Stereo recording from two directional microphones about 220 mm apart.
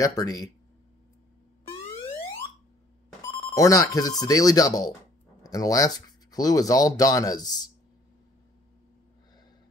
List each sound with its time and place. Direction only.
0.0 s speech: 15° left (ahead or behind)
3.3 s speech: 20° left (ahead or behind)